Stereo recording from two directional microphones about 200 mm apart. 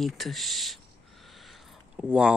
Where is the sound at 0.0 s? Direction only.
Centre (ahead or behind).